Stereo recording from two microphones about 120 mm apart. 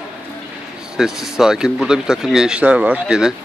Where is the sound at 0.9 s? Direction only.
5° right (ahead or behind).